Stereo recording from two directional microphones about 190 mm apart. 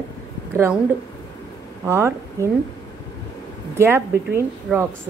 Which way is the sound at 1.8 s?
15° right (ahead or behind).